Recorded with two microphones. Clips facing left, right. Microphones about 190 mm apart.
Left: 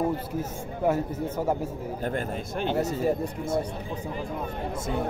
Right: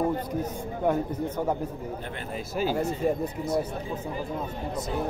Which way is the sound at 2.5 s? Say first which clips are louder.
Right 1 dB; 5° right (ahead or behind).